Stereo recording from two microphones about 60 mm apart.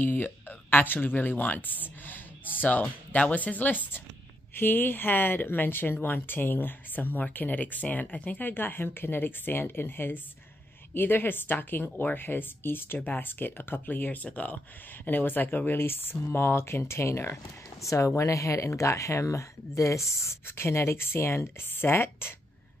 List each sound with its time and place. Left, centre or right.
0.0 s speech: left